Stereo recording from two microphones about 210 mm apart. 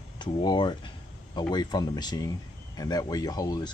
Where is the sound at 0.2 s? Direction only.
20° left (ahead or behind).